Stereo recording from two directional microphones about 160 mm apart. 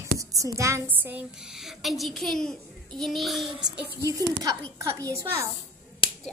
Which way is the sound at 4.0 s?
20° right (ahead or behind).